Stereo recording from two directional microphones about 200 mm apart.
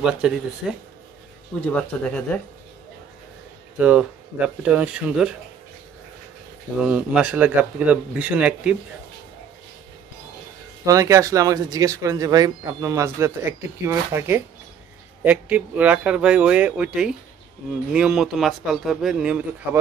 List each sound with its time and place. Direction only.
0.0 s speech: 5° right (ahead or behind)
1.6 s speech: 5° left (ahead or behind)
3.7 s speech: 5° right (ahead or behind)
6.9 s speech: 5° right (ahead or behind)
10.9 s speech: 15° right (ahead or behind)